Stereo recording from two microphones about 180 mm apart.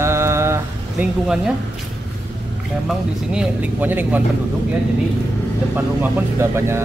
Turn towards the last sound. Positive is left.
turn(degrees=-10)  # may be behind; listen again after turning